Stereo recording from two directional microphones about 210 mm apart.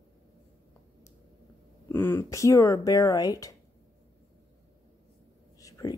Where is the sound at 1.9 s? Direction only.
10° left (ahead or behind).